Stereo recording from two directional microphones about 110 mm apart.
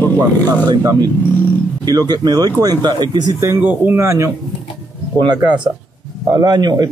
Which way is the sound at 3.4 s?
20° right (ahead or behind).